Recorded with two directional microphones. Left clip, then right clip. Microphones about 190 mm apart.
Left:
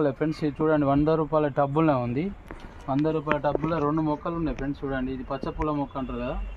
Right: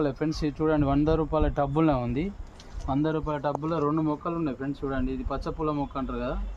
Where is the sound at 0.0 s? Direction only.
30° left (ahead or behind).